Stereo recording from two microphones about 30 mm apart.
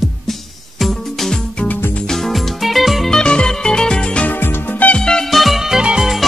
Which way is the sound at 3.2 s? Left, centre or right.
Left.